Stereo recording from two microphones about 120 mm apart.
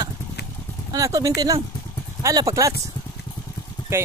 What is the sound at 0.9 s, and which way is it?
Speech, 30° right (ahead or behind).